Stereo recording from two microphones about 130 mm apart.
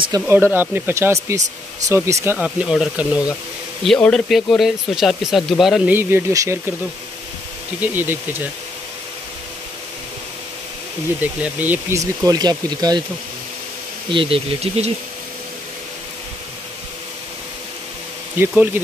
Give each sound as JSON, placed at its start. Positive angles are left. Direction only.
{"t": 0.3, "sound": "speech", "side_deg": -15}
{"t": 2.2, "sound": "speech", "side_deg": -10}
{"t": 3.8, "sound": "speech", "side_deg": 5}
{"t": 5.9, "sound": "speech", "side_deg": -15}
{"t": 7.8, "sound": "speech", "side_deg": -15}
{"t": 11.1, "sound": "speech", "side_deg": -15}
{"t": 12.0, "sound": "speech", "side_deg": -25}
{"t": 14.1, "sound": "speech", "side_deg": -45}